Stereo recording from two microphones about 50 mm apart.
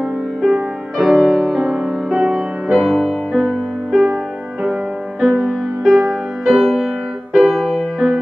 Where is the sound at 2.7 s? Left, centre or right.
Centre.